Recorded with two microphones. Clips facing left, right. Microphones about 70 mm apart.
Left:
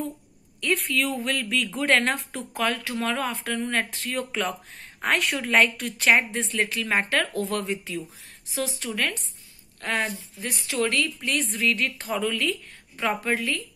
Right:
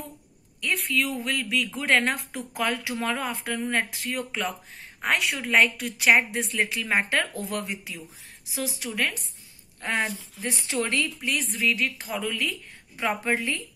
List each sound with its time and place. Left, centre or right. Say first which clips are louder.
0.6 s a woman's voice: left 2 dB; centre
2.0 s a woman's voice: left 1 dB; centre
6.6 s speech: even; centre
11.1 s speech: left 1 dB; centre; by 13.7 s right